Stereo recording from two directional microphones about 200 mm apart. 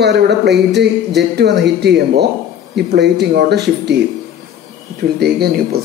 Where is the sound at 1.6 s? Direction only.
55° right (ahead or behind).